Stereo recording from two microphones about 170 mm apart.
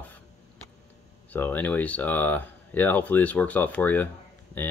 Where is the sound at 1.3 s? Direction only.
10° left (ahead or behind).